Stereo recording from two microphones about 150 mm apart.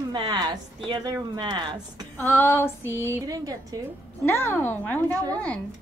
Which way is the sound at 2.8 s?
20° right (ahead or behind).